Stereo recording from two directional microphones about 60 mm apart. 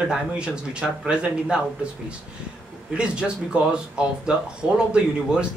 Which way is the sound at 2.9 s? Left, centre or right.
Centre.